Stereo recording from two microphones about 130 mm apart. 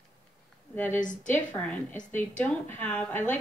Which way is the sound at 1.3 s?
10° left (ahead or behind).